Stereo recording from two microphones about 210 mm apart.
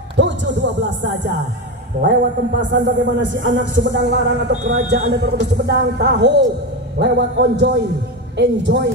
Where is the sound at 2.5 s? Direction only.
60° right (ahead or behind).